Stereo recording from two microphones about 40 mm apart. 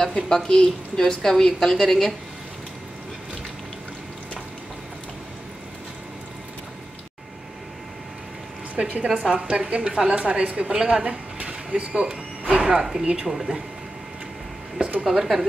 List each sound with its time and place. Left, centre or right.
0.0 s a woman's voice: centre
8.7 s a woman's voice: right
11.9 s a woman's voice: centre
15.0 s speech: centre